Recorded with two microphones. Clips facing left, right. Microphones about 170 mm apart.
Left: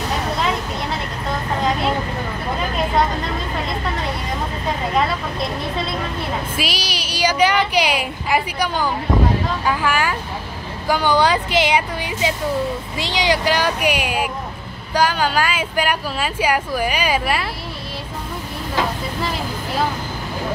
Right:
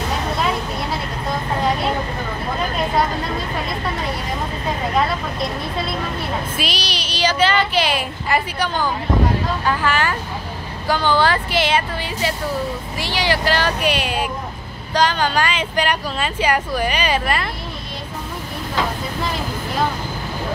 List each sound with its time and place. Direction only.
6.5 s speech: 10° left (ahead or behind)